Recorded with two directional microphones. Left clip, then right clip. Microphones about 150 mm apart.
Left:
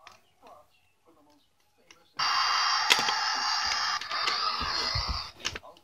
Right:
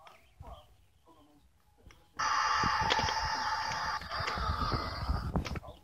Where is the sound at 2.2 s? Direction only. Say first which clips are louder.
Left 3 dB; 90° left.